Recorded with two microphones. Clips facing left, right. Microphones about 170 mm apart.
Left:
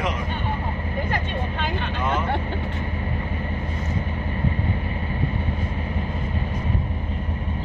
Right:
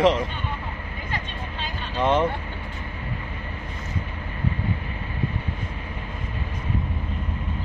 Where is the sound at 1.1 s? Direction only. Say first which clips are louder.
Left 6 dB; 60° left (ahead or behind).